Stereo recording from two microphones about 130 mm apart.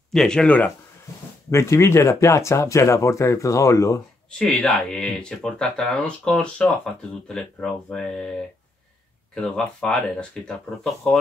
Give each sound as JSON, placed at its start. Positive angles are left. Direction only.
{"t": 0.1, "sound": "speech", "side_deg": 5}
{"t": 1.5, "sound": "speech", "side_deg": 20}
{"t": 4.4, "sound": "speech", "side_deg": 5}